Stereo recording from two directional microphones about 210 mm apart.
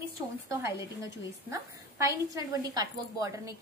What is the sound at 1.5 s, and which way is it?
A woman's voice, 15° right (ahead or behind).